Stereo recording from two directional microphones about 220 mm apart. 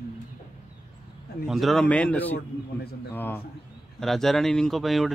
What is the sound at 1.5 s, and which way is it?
Speech, centre (ahead or behind).